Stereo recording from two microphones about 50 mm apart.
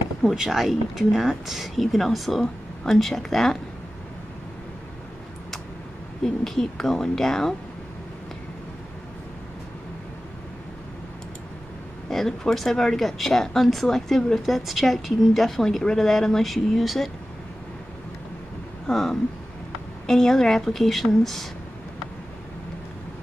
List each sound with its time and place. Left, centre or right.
0.4 s speech: centre
6.2 s speech: centre
12.1 s speech: centre
18.9 s speech: centre